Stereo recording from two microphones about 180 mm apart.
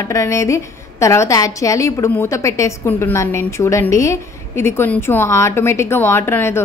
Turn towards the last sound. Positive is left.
turn(degrees=15)  # may be behind; listen again after turning